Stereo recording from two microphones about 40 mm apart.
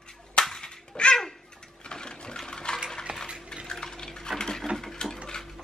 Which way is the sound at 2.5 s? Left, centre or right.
Centre.